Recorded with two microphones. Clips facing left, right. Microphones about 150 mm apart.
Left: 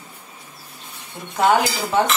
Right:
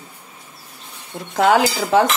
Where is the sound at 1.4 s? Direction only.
90° right.